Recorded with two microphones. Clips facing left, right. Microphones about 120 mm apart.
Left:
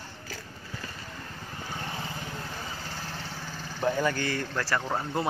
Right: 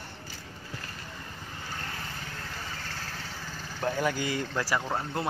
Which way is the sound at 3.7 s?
5° left (ahead or behind).